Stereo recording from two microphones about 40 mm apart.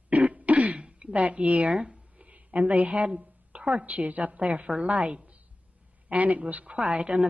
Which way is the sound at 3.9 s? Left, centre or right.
Right.